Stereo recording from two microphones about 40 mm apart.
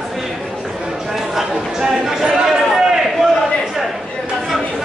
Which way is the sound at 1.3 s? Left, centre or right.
Centre.